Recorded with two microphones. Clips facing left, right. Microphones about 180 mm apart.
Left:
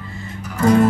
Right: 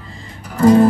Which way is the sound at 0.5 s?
30° right (ahead or behind).